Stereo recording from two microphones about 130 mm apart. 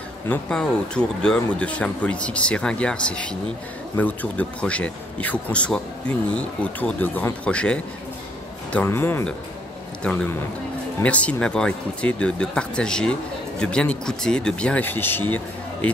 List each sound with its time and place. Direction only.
0.3 s speech: 5° left (ahead or behind)
8.8 s speech: 20° left (ahead or behind)
11.0 s speech: 10° left (ahead or behind)